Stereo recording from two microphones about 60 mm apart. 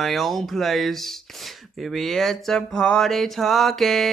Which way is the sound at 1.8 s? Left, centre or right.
Centre.